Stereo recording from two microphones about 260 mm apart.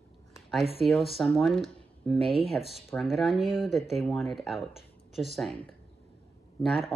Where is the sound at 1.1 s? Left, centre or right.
Centre.